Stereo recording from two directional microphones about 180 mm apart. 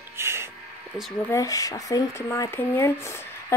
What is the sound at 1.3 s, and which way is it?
A woman's voice, 20° left (ahead or behind).